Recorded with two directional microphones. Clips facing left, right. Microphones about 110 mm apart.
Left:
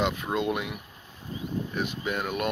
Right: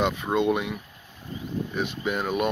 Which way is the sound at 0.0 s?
Centre (ahead or behind).